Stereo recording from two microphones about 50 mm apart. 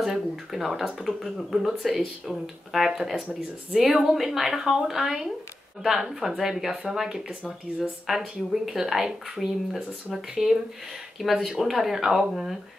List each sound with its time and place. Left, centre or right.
0.0 s speech: centre